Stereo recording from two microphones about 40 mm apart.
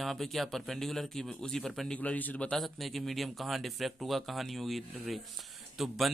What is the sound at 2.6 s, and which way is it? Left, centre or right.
Speech, centre.